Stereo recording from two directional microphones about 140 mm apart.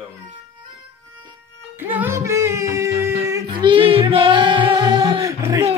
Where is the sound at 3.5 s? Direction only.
35° right (ahead or behind); by 5.7 s 20° right (ahead or behind).